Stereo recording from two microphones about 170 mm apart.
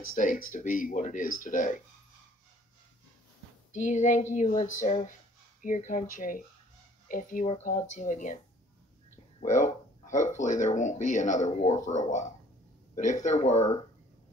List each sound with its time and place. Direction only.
0.1 s speech: 50° left (ahead or behind)
3.7 s speech: 45° left (ahead or behind)
9.4 s speech: 45° left (ahead or behind)
12.9 s speech: 45° left (ahead or behind)